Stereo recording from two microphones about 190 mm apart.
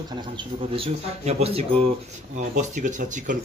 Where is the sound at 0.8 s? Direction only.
30° right (ahead or behind).